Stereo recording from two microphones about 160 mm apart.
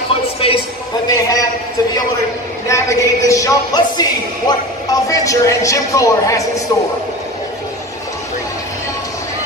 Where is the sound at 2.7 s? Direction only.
20° left (ahead or behind).